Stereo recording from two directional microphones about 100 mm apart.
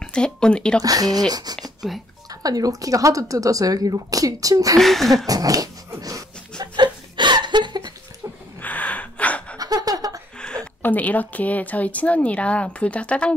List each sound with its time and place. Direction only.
0.0 s speech: 10° left (ahead or behind)
0.8 s speech: 40° right (ahead or behind)
1.6 s whispering: centre (ahead or behind)
2.4 s speech: 40° right (ahead or behind)
4.7 s a sound: centre (ahead or behind)
5.2 s dog: 35° right (ahead or behind)
6.6 s chuckle: 50° right (ahead or behind)
8.6 s gasp: 15° left (ahead or behind)
9.6 s a sound: 40° right (ahead or behind)
10.4 s speech: 10° left (ahead or behind)